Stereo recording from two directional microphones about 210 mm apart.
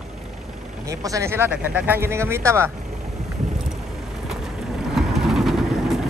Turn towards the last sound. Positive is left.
turn(degrees=0)  # may be behind; listen again after turning